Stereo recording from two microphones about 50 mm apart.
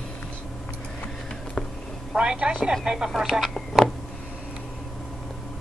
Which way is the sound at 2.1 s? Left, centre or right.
Right.